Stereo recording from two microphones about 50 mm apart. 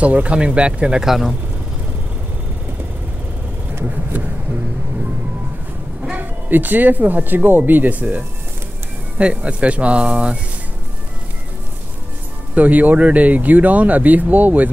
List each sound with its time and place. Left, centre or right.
0.0 s speech: right
1.0 s speech: centre
6.0 s speech: right
9.2 s speech: right
12.5 s speech: right